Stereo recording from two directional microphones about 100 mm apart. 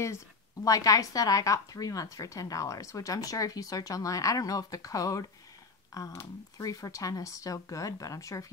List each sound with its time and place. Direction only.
0.7 s speech: 35° left (ahead or behind)